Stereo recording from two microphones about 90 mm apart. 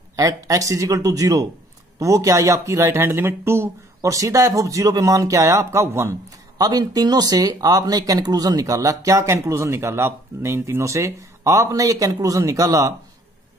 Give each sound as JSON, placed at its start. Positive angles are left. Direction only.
{"t": 0.1, "sound": "speech", "side_deg": -40}
{"t": 6.6, "sound": "speech", "side_deg": -45}